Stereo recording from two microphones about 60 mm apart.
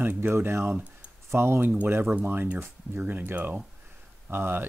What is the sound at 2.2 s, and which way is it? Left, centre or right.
Speech, right.